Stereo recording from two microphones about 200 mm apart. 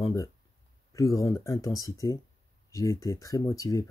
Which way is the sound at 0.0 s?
15° left (ahead or behind).